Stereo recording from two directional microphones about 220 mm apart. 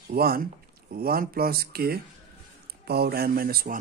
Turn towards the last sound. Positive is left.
turn(degrees=-40)  # may be behind; listen again after turning